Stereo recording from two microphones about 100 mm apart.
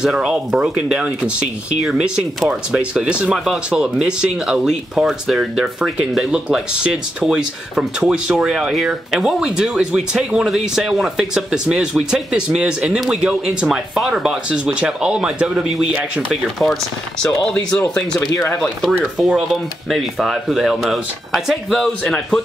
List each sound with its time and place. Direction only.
0.0 s speech: 10° right (ahead or behind); by 18.3 s 10° left (ahead or behind)
18.3 s speech: 30° left (ahead or behind)
18.6 s speech: centre (ahead or behind)